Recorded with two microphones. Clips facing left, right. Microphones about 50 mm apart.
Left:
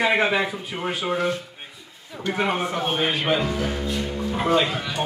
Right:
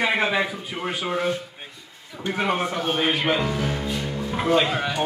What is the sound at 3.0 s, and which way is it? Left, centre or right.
Speech, centre.